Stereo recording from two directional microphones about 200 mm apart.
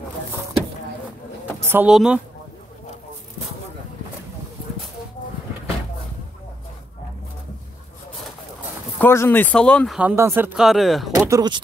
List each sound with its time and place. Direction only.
1.6 s speech: 10° right (ahead or behind)
8.9 s speech: 10° left (ahead or behind)
11.1 s speech: 15° right (ahead or behind)